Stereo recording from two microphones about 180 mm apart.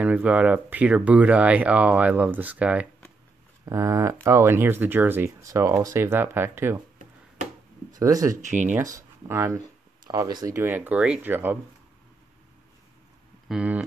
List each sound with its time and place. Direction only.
0.0 s speech: 5° right (ahead or behind)
8.0 s speech: 20° right (ahead or behind)
8.4 s speech: 45° right (ahead or behind)
8.7 s speech: 15° right (ahead or behind)
13.5 s speech: 5° right (ahead or behind)